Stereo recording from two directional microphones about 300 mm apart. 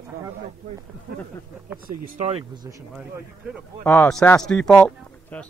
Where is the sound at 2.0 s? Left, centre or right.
Right.